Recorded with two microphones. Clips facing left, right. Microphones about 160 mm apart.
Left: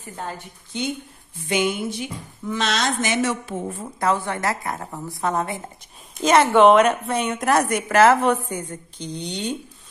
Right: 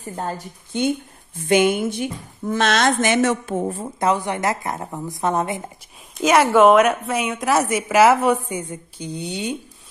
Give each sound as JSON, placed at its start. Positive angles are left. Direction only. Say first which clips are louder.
{"t": 0.0, "sound": "a woman's voice", "louder": "right 5 dB", "side_deg": -40}
{"t": 3.8, "sound": "a woman's voice", "louder": "left 1 dB", "side_deg": -20}
{"t": 6.1, "sound": "a woman's voice", "louder": "right 1 dB", "side_deg": -10}